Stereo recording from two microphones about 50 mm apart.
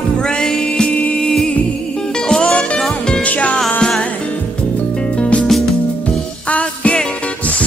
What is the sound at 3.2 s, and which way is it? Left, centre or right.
Music, left.